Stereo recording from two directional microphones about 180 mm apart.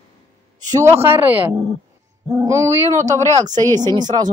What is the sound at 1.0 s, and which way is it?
Speech, 10° right (ahead or behind).